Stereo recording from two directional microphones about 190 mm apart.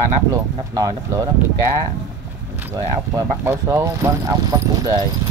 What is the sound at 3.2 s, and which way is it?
Speech, 15° right (ahead or behind).